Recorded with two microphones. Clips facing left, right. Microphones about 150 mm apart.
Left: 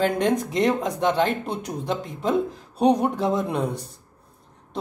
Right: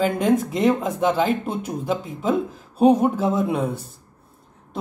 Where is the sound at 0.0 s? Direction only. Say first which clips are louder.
Right 2 dB; centre (ahead or behind).